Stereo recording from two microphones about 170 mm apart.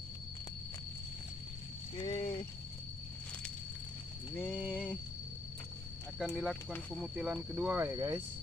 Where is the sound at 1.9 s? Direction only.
30° left (ahead or behind).